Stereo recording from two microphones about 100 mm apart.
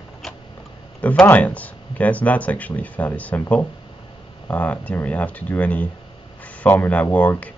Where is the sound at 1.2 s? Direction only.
15° left (ahead or behind).